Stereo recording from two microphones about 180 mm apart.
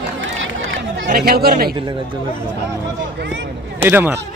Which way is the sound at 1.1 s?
60° right (ahead or behind).